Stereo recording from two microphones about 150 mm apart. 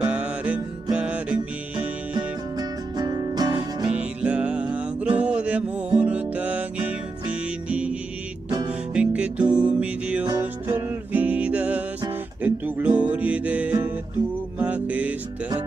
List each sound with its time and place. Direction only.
0.0 s music: 10° right (ahead or behind)
3.0 s music: 25° right (ahead or behind)
3.9 s music: 10° right (ahead or behind)